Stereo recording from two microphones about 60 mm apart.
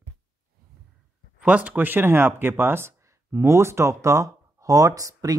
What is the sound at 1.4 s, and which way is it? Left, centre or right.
Speech, right.